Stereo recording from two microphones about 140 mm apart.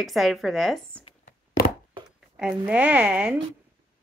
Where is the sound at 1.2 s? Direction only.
70° left (ahead or behind).